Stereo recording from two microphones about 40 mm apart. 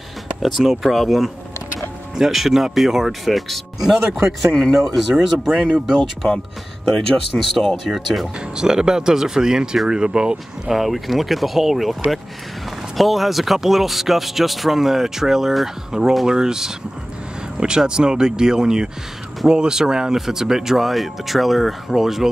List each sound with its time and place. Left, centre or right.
0.4 s speech: centre
5.1 s speech: centre
5.4 s speech: centre
7.3 s speech: centre
8.5 s speech: centre
10.7 s speech: centre